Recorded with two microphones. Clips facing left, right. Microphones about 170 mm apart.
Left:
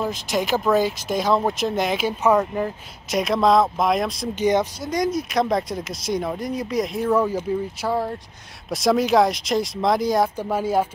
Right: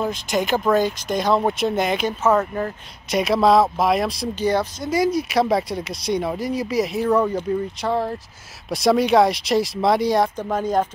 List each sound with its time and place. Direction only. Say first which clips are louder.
0.0 s speech: right 1 dB; centre (ahead or behind)
2.2 s speech: left 1 dB; 15° left (ahead or behind)
3.1 s speech: right 2 dB; centre (ahead or behind)
4.4 s speech: left 2 dB; 15° left (ahead or behind)
4.8 s speech: right 3 dB; 5° right (ahead or behind)